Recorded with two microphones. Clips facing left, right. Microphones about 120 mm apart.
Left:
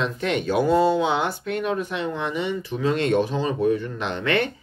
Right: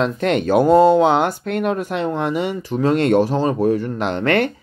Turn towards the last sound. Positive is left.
turn(degrees=-50)  # may be behind; listen again after turning